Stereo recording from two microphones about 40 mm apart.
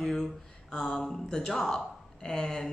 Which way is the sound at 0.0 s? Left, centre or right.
Centre.